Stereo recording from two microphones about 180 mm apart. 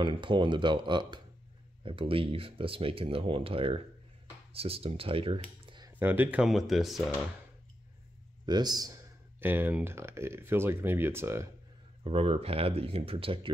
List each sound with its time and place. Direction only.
0.0 s speech: 25° right (ahead or behind)
5.9 s speech: 10° right (ahead or behind)
8.5 s speech: 25° right (ahead or behind)
12.0 s speech: 35° right (ahead or behind)